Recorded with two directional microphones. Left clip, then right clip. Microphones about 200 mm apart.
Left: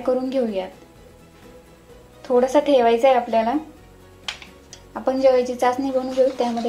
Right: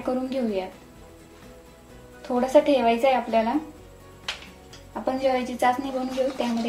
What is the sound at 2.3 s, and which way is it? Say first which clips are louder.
A woman's voice: left 3 dB; 20° left (ahead or behind).